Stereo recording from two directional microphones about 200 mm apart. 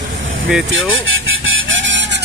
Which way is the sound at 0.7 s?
75° right (ahead or behind).